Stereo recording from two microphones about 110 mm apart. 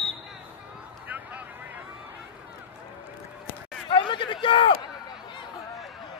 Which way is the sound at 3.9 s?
50° left (ahead or behind).